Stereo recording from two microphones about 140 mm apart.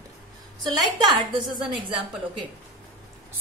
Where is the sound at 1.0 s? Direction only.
30° right (ahead or behind).